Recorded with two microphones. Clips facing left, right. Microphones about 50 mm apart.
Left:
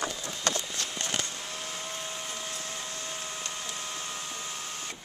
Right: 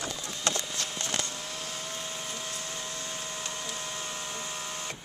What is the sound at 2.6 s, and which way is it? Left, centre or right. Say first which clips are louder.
Printer: even; centre.